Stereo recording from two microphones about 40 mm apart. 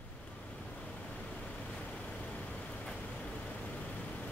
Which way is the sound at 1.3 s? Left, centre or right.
Left.